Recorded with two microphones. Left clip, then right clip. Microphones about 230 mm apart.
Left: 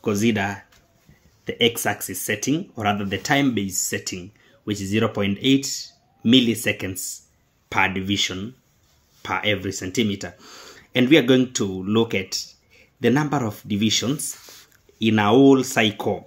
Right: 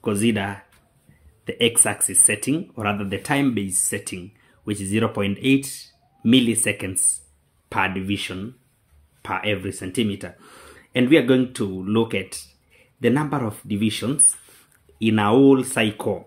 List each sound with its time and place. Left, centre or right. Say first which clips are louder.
0.0 s speech: left 1 dB; centre